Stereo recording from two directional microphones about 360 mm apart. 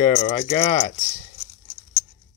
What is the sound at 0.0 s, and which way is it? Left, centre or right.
Speech, left.